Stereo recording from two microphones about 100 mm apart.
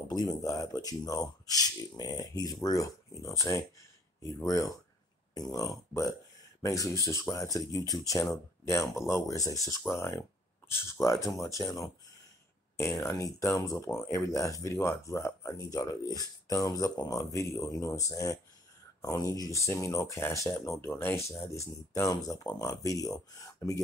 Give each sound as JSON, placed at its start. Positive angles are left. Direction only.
{"t": 0.1, "sound": "speech", "side_deg": 40}